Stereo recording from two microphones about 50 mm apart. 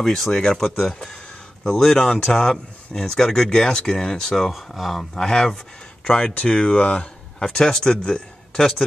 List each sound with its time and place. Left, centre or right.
0.0 s speech: centre
5.1 s speech: centre
7.3 s a man's voice: centre